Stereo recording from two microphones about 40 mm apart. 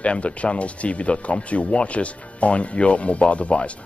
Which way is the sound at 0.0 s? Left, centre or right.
Left.